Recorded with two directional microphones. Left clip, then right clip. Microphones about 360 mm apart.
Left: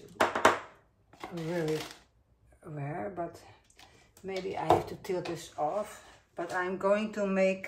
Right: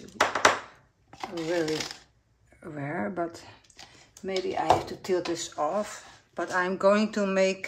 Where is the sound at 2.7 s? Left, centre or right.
Right.